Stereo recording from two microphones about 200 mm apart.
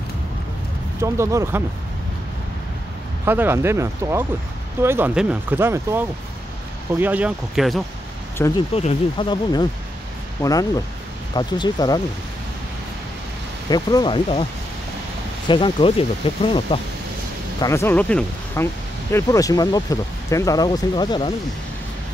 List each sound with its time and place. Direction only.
1.0 s speech: 15° right (ahead or behind)
3.3 s speech: 10° right (ahead or behind)
8.5 s speech: 30° left (ahead or behind)
13.7 s speech: 20° left (ahead or behind)
15.4 s speech: 25° left (ahead or behind)
17.6 s speech: 15° left (ahead or behind)